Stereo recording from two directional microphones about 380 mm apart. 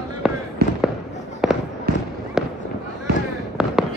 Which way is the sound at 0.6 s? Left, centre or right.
Right.